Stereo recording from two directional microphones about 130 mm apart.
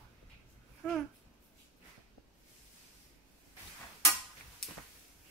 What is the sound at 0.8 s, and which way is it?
Babbling, 5° left (ahead or behind).